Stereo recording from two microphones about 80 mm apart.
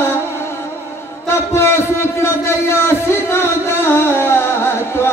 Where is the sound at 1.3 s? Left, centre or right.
Left.